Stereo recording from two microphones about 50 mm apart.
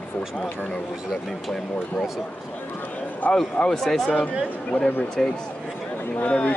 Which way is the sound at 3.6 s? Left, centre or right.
Centre.